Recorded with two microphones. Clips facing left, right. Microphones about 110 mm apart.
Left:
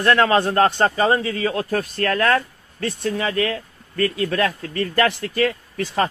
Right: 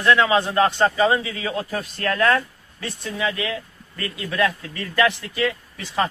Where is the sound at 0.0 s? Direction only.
50° left (ahead or behind).